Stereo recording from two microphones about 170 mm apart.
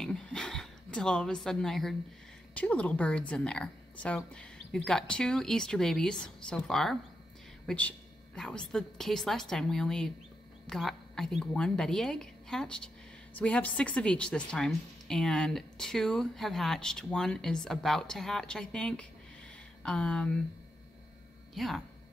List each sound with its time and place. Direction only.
0.0 s a sound: 5° left (ahead or behind)
2.5 s a woman's voice: 10° left (ahead or behind)
21.5 s a woman's voice: centre (ahead or behind)